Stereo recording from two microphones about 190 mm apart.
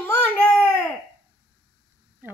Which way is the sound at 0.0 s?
10° left (ahead or behind).